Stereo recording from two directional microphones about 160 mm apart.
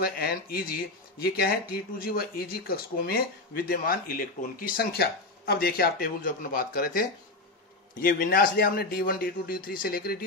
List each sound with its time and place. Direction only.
0.0 s speech: 70° left (ahead or behind)